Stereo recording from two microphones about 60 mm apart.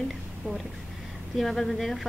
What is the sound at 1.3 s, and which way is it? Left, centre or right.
Speech, centre.